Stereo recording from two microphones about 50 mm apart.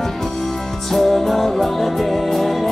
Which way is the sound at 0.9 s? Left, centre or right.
Centre.